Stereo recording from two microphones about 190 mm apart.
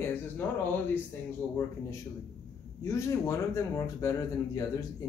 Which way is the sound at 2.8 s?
15° left (ahead or behind).